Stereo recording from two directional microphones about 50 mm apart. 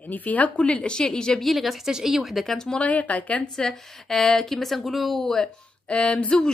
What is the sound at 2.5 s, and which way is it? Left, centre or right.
Speech, centre.